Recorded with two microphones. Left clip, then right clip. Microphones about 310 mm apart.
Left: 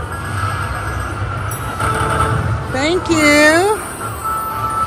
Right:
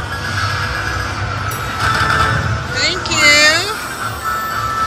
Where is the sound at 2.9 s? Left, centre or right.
Centre.